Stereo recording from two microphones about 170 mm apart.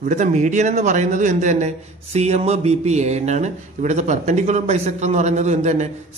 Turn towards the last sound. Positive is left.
turn(degrees=-40)  # may be behind; listen again after turning